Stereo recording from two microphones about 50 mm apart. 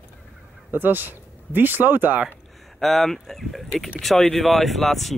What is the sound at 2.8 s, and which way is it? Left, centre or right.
Speech, centre.